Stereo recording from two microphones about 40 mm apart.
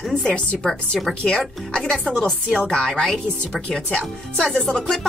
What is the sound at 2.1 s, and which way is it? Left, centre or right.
Speech, centre.